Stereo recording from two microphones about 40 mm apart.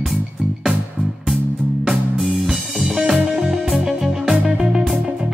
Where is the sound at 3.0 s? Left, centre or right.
Right.